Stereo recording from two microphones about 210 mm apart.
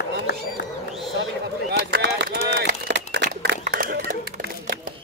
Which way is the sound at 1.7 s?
55° right (ahead or behind).